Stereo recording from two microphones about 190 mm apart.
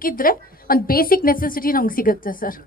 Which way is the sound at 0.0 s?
50° left (ahead or behind).